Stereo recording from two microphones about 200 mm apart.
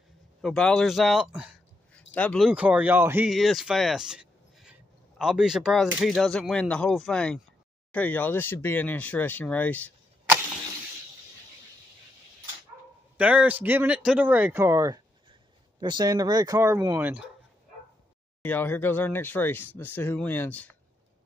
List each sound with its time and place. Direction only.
0.4 s speech: 5° left (ahead or behind)
13.2 s speech: 5° right (ahead or behind)
18.4 s speech: 10° left (ahead or behind)